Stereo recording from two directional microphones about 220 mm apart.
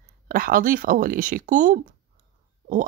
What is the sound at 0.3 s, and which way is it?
Speech, 40° right (ahead or behind).